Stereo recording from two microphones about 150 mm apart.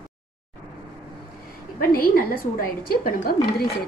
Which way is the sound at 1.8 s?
80° left.